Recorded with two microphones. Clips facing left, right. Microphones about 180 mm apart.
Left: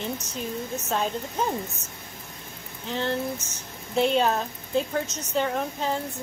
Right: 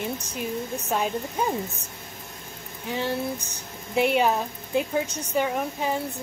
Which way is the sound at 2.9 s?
10° right (ahead or behind).